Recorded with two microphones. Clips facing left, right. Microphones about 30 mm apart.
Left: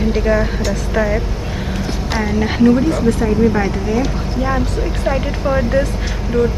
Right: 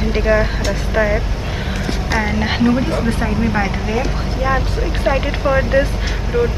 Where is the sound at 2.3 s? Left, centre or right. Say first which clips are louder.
Left 5 dB; right.